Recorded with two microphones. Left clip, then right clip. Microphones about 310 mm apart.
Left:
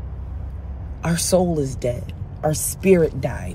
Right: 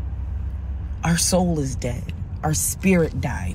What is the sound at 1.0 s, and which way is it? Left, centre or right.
A woman's voice, centre.